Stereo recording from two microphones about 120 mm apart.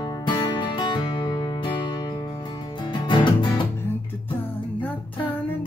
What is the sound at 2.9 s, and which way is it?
Music, 40° left (ahead or behind).